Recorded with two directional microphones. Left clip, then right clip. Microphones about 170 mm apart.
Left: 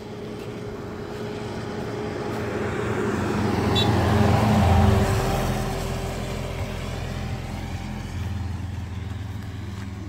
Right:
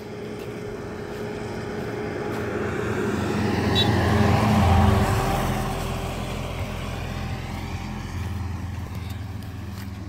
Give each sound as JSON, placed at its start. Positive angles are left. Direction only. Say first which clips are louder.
{"t": 1.2, "sound": "vehicle", "louder": "even", "side_deg": -60}
{"t": 4.3, "sound": "vehicle", "louder": "even", "side_deg": 0}
{"t": 4.6, "sound": "vehicle", "louder": "even", "side_deg": 15}
{"t": 5.5, "sound": "vehicle", "louder": "even", "side_deg": 15}